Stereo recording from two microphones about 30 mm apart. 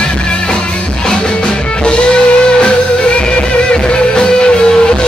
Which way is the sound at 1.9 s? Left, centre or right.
Left.